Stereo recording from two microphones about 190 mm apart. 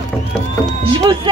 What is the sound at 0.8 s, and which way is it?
Speech, 25° right (ahead or behind).